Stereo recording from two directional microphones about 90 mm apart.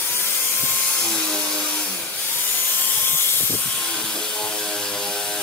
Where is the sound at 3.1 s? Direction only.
25° left (ahead or behind).